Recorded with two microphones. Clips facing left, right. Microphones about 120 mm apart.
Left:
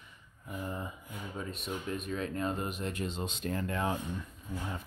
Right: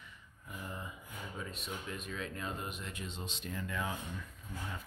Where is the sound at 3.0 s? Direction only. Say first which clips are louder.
Left 8 dB; 70° left (ahead or behind).